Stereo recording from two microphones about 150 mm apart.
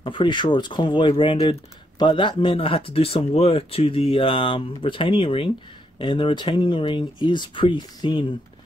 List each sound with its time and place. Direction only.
0.0 s speech: 35° left (ahead or behind)